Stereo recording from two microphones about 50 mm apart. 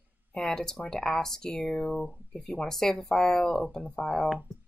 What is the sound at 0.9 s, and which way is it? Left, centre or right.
Speech, centre.